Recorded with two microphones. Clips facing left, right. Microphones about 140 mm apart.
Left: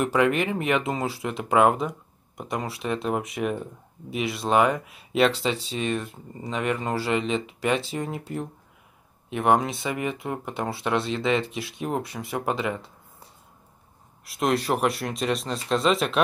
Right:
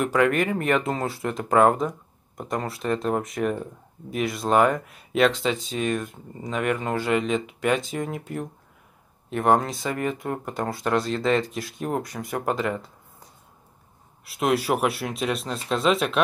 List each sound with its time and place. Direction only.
0.1 s speech: 10° left (ahead or behind)
0.8 s speech: centre (ahead or behind)
5.5 s speech: 35° left (ahead or behind)
5.8 s speech: 5° right (ahead or behind)
7.9 s speech: 5° left (ahead or behind)
9.3 s speech: 5° left (ahead or behind)
14.2 s speech: centre (ahead or behind)